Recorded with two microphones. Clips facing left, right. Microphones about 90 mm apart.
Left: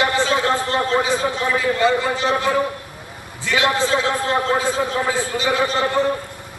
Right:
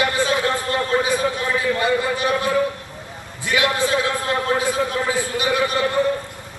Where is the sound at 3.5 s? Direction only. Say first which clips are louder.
Left 1 dB; 25° left (ahead or behind).